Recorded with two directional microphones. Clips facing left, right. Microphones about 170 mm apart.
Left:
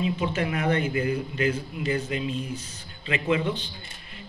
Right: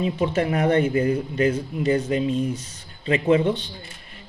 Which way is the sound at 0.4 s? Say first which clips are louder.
Right 7 dB; 40° right (ahead or behind).